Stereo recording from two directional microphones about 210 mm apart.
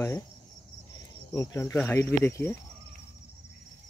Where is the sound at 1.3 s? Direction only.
15° left (ahead or behind).